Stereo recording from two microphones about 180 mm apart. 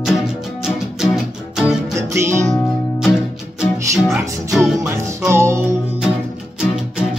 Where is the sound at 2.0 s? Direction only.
15° right (ahead or behind).